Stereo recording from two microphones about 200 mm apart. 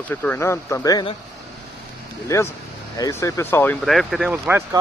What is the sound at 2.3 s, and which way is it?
Speech, 15° left (ahead or behind).